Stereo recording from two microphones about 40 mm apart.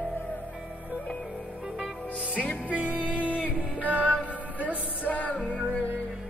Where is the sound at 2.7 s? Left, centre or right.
Right.